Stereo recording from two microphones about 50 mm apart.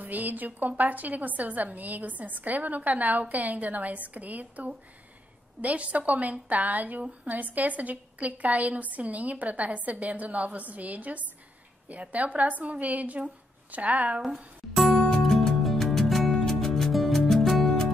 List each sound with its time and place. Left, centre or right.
0.0 s a woman's voice: right
14.8 s music: centre